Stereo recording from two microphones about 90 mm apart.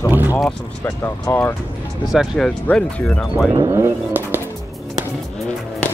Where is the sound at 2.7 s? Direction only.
5° left (ahead or behind).